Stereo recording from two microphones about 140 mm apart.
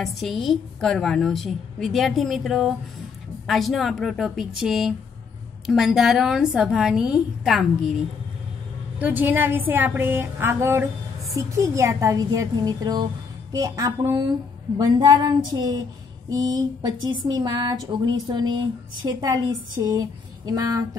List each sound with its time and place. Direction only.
0.0 s a woman's voice: centre (ahead or behind)
9.0 s a woman's voice: 15° right (ahead or behind)
19.8 s a sound: 25° right (ahead or behind)